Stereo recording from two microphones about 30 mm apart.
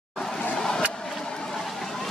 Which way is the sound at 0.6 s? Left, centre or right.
Left.